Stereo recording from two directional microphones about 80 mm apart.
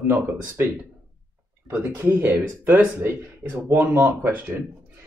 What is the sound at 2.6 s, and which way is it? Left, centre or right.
Speech, centre.